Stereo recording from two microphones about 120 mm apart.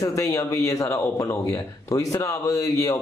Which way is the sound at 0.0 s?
25° left (ahead or behind).